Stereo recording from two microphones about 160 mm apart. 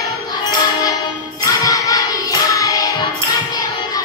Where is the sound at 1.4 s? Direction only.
20° left (ahead or behind).